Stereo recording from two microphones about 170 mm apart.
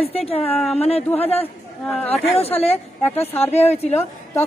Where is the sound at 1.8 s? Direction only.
10° left (ahead or behind).